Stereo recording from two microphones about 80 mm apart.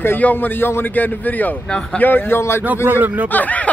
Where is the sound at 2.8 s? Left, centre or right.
Right.